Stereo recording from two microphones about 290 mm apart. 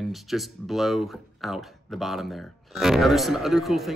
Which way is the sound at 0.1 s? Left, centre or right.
Centre.